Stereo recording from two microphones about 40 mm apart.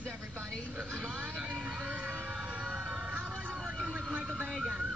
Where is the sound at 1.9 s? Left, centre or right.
Right.